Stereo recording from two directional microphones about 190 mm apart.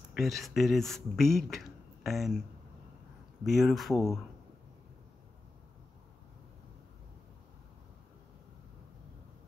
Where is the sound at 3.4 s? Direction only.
Centre (ahead or behind).